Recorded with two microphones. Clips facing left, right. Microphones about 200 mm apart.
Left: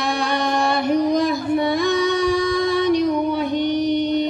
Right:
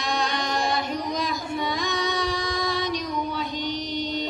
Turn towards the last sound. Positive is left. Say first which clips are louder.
# left 10 dB
turn(degrees=60)  # may be behind; listen again after turning